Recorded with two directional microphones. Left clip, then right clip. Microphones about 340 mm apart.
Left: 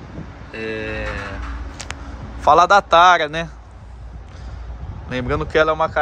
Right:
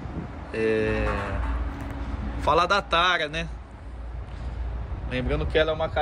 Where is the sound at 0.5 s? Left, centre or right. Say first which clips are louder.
Right 2 dB; centre.